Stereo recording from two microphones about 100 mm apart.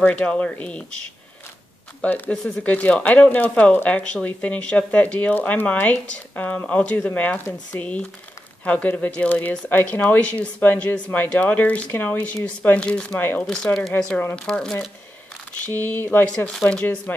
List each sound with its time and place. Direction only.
0.0 s speech: 10° left (ahead or behind)
2.0 s speech: 15° left (ahead or behind)
13.7 s speech: 5° left (ahead or behind)
15.6 s speech: 20° left (ahead or behind)